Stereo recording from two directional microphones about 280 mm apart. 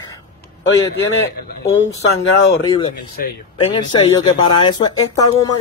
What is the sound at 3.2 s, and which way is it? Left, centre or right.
Speech, left.